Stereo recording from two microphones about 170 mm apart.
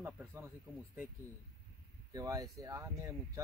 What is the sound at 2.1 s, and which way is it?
Speech, 20° right (ahead or behind).